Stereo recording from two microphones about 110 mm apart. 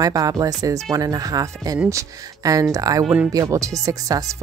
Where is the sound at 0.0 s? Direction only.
35° right (ahead or behind).